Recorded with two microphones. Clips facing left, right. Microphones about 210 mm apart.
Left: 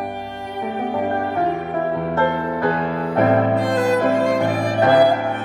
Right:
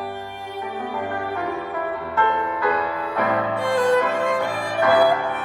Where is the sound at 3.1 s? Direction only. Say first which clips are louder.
Left 7 dB; 50° left (ahead or behind).